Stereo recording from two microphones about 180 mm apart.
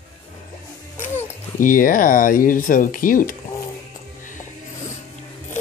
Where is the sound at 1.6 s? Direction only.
50° left (ahead or behind).